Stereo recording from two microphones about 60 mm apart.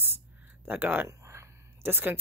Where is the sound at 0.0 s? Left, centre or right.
Right.